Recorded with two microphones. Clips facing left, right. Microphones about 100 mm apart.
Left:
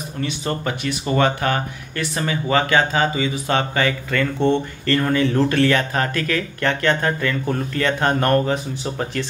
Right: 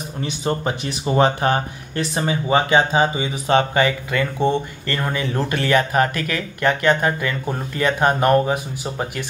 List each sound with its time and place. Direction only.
0.2 s speech: 25° right (ahead or behind)